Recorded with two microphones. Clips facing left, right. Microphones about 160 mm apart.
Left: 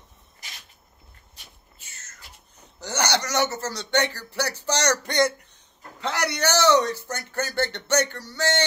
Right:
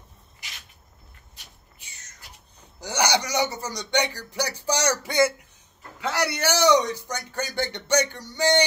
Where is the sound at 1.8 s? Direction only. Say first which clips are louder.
Left 2 dB; 15° right (ahead or behind).